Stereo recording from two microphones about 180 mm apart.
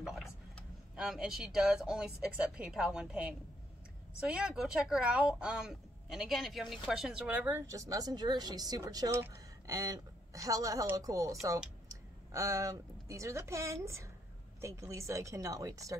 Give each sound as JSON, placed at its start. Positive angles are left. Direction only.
{"t": 0.0, "sound": "a woman's voice", "side_deg": 0}